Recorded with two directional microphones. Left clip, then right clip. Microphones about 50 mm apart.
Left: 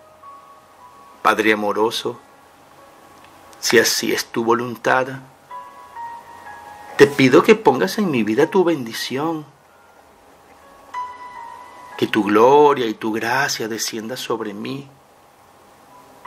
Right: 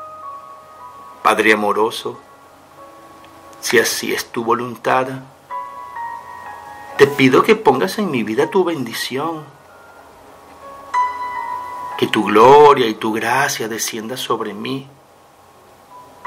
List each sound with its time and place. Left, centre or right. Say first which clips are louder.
1.2 s a man's voice: right 3 dB; left
3.6 s speech: even; left
7.0 s speech: right 1 dB; left
11.9 s speech: right 2 dB; left